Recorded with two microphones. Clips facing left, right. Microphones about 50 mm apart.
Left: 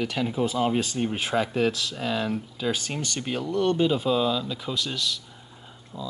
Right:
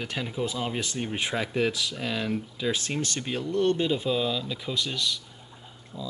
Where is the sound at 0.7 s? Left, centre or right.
Centre.